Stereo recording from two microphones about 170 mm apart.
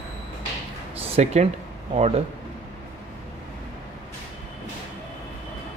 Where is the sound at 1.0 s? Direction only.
40° right (ahead or behind).